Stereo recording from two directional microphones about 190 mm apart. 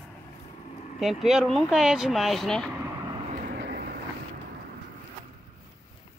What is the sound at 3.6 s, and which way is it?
Vehicle, 55° right (ahead or behind).